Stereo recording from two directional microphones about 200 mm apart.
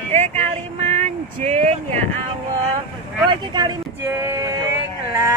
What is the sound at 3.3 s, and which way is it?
Speech, 20° right (ahead or behind).